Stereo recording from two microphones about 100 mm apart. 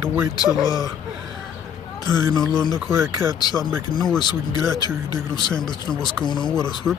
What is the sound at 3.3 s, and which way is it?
Speech, 45° left (ahead or behind).